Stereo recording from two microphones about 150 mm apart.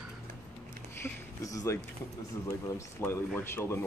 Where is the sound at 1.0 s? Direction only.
20° left (ahead or behind).